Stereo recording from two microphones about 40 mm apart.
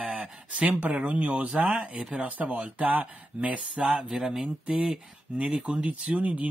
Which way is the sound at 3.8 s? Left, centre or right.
Right.